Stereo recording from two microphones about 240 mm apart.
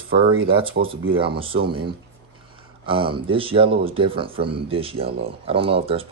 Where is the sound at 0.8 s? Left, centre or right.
Right.